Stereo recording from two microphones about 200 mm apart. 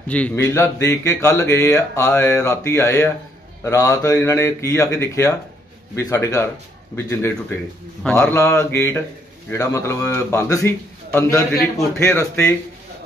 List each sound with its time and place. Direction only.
0.1 s speech: 10° left (ahead or behind)